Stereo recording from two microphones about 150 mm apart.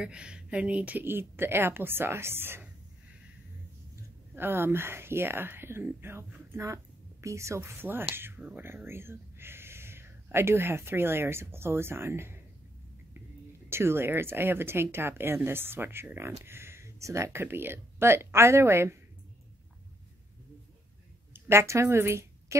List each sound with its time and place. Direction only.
0.0 s speech: 5° right (ahead or behind)
4.4 s speech: 15° right (ahead or behind)
13.7 s speech: 15° right (ahead or behind)
21.3 s a woman's voice: 15° right (ahead or behind)